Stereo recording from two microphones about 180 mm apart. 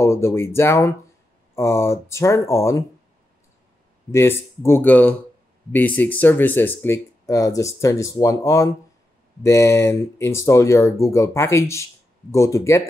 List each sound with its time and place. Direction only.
0.0 s speech: 15° left (ahead or behind)
4.1 s speech: 15° left (ahead or behind)